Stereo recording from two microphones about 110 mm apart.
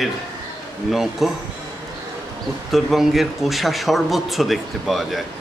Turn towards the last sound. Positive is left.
turn(degrees=0)  # may be behind; listen again after turning